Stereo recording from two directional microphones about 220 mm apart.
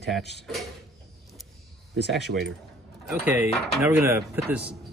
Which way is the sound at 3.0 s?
5° right (ahead or behind).